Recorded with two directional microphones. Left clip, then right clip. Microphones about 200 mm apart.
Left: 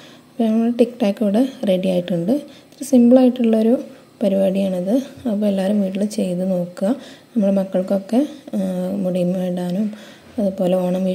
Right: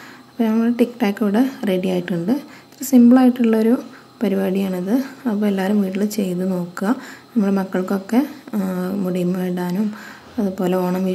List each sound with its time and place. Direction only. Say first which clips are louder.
0.4 s a woman's voice: left 1 dB; 40° left (ahead or behind)